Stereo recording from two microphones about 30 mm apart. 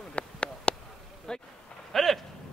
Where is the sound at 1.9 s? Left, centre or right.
Centre.